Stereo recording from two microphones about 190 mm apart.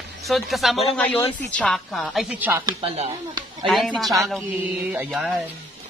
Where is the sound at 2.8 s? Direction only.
30° right (ahead or behind).